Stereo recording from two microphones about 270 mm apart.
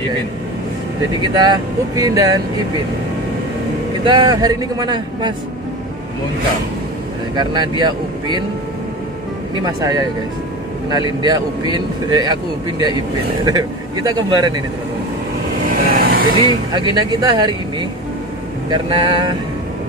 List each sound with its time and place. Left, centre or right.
1.3 s speech: centre
4.0 s speech: centre
7.3 s speech: centre
9.8 s speech: centre
15.7 s vehicle: right
16.3 s speech: centre